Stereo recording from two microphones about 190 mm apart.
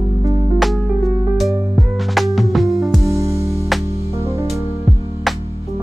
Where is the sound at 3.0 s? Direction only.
15° right (ahead or behind).